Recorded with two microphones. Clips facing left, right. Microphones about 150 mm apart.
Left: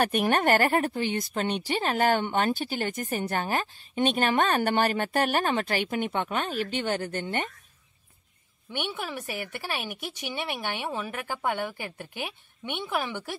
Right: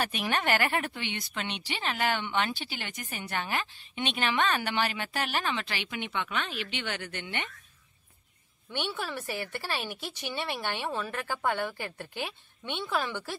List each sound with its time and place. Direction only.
0.0 s speech: 50° left (ahead or behind)
8.7 s speech: 15° left (ahead or behind)